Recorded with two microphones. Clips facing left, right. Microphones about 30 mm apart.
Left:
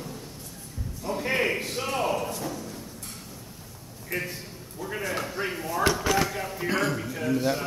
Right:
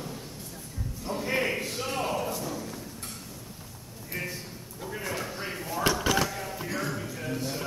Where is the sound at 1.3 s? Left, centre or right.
Centre.